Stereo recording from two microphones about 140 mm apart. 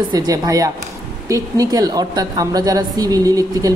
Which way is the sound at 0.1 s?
25° right (ahead or behind).